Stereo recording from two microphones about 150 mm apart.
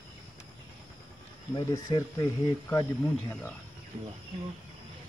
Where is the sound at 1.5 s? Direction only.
25° left (ahead or behind).